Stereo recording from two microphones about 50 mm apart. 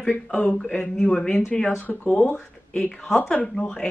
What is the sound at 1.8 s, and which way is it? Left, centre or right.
Speech, left.